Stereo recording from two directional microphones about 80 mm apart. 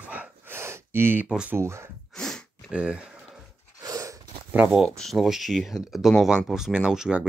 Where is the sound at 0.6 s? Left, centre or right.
Right.